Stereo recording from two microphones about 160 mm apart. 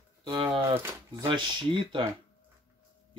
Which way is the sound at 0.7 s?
15° right (ahead or behind).